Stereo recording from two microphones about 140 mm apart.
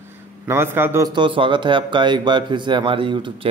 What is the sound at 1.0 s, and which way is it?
Speech, 35° right (ahead or behind).